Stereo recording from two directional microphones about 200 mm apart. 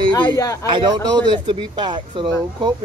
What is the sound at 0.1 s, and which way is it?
Speech, 20° left (ahead or behind).